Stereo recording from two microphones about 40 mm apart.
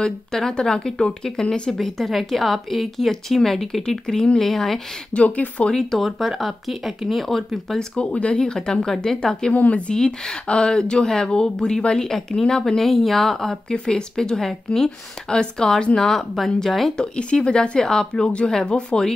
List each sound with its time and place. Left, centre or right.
0.0 s a woman's voice: centre
5.1 s speech: left
5.8 s speech: centre
6.0 s a woman's voice: centre
7.9 s speech: left
8.6 s speech: centre
9.5 s speech: left
10.5 s speech: left
16.0 s speech: centre
16.9 s speech: left